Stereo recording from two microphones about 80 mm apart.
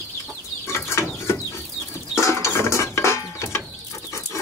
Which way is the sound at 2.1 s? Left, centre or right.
Left.